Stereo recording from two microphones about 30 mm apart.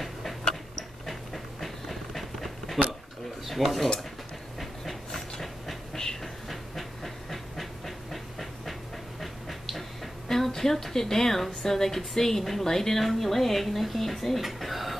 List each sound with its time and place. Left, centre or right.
0.0 s a sound: centre
3.4 s speech: centre
4.6 s train: centre
7.0 s steam: centre
9.2 s dog: centre
10.2 s a woman's voice: centre
14.4 s a sound: centre